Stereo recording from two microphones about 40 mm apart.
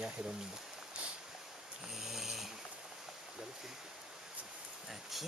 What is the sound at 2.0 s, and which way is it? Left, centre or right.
Snoring, centre.